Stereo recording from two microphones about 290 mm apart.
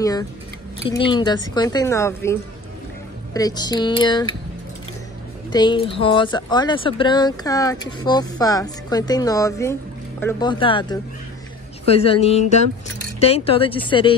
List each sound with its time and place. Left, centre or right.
0.0 s a sound: centre
1.0 s speech: centre
3.3 s speech: centre
5.5 s speech: centre